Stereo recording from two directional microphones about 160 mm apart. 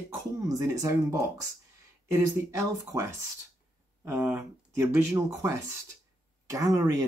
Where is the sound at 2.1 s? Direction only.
15° right (ahead or behind).